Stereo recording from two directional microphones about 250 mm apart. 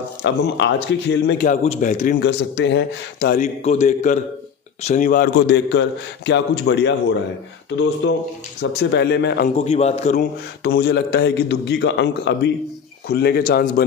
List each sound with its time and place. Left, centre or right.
0.2 s a man's voice: left
1.5 s a man's voice: left
3.6 s a man's voice: left
8.0 s a man's voice: left
9.6 s a man's voice: left
10.6 s a man's voice: left